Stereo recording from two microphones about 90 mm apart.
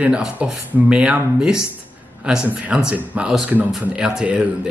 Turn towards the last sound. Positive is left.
turn(degrees=-15)  # may be behind; listen again after turning